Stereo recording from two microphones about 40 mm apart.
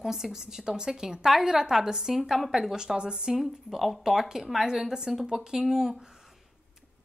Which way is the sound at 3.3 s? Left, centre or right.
Centre.